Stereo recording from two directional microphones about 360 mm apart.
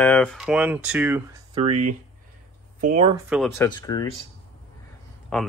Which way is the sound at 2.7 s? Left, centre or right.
Centre.